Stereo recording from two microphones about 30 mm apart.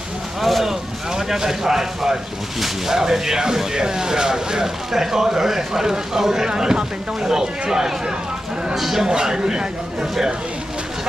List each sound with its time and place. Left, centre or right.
0.4 s speech: centre
0.7 s speech: centre
8.7 s speech: centre
9.0 s speech: right